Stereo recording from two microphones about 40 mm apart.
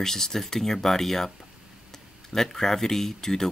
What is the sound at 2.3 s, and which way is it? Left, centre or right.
Speech, centre.